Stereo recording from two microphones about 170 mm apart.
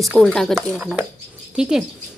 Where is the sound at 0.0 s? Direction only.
Centre (ahead or behind).